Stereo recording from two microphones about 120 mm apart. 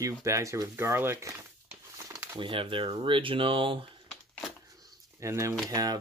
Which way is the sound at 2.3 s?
45° right (ahead or behind).